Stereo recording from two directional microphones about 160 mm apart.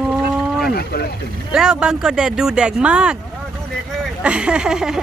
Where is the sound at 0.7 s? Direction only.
75° left (ahead or behind).